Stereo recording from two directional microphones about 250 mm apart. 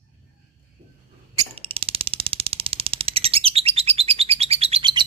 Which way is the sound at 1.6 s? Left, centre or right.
Right.